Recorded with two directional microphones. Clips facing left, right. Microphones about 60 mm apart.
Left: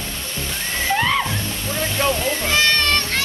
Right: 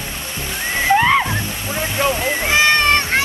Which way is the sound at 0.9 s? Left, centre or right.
Right.